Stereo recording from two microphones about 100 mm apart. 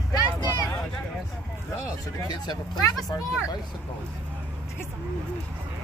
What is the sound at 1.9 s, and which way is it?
Speech, 40° left (ahead or behind).